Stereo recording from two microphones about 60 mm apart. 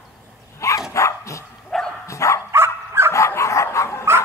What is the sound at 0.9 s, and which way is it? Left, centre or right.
Dog, left.